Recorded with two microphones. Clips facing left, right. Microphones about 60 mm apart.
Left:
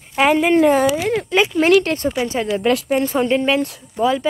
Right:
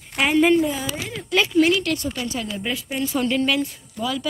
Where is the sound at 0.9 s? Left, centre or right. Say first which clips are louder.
Left 12 dB; left.